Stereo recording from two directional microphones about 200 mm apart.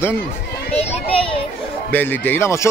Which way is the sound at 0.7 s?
30° left (ahead or behind).